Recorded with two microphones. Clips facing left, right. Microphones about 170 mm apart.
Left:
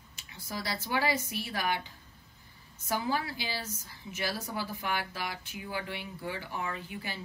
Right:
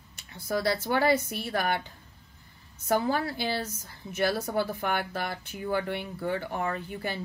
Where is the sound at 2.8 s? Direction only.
55° right (ahead or behind).